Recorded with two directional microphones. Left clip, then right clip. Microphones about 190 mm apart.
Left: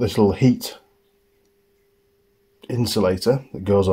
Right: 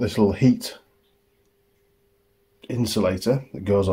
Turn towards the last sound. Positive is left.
turn(degrees=40)  # may be behind; listen again after turning